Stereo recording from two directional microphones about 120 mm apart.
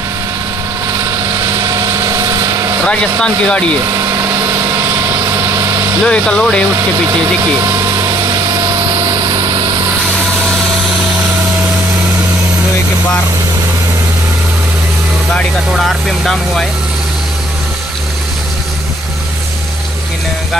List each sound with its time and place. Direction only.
0.9 s vehicle: 25° right (ahead or behind)
3.2 s speech: 10° left (ahead or behind)
3.9 s vehicle: 20° right (ahead or behind)
6.0 s speech: 10° left (ahead or behind)
6.7 s speech: 25° right (ahead or behind)
15.3 s speech: centre (ahead or behind)